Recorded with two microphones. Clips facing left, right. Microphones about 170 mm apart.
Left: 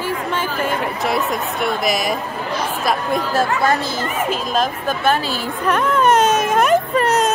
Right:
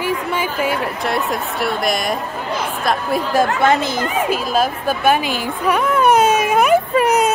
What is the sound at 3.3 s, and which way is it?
Speech, 20° right (ahead or behind).